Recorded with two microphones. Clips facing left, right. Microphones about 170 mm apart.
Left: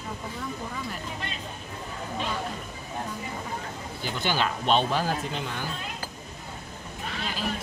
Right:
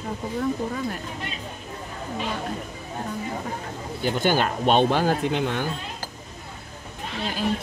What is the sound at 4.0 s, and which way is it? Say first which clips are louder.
Speech: right 6 dB; 50° right (ahead or behind).